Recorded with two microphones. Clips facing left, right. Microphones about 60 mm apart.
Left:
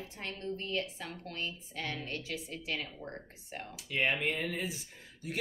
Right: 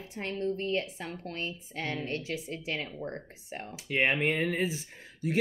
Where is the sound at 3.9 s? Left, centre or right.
Right.